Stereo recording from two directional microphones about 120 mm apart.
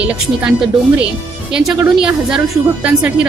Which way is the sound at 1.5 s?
5° right (ahead or behind).